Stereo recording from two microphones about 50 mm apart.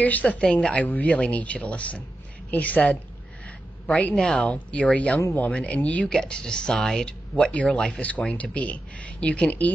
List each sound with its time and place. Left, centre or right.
0.0 s a woman's voice: left
0.4 s speech: centre
0.7 s a woman's voice: left
6.2 s speech: centre